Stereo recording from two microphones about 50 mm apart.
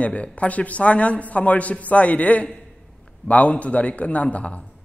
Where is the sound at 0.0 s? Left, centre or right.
Left.